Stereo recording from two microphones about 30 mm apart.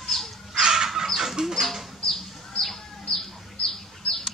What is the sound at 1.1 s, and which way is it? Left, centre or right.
Chicken, centre.